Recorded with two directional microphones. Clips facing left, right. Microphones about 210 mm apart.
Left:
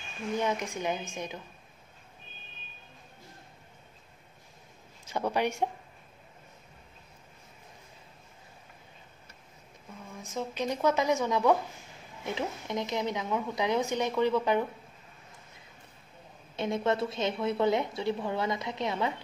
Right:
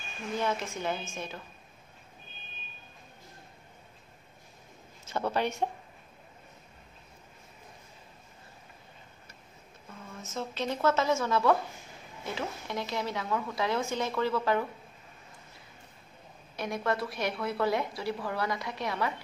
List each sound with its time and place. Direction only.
0.4 s speech: 15° left (ahead or behind)
5.0 s speech: 15° left (ahead or behind)
10.1 s a woman's voice: 15° left (ahead or behind)
16.5 s a woman's voice: 25° left (ahead or behind)